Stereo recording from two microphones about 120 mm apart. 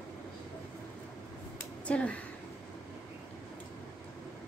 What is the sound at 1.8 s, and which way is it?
Speech, 10° left (ahead or behind).